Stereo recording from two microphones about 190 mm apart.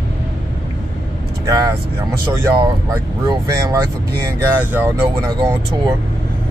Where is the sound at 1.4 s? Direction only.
20° right (ahead or behind).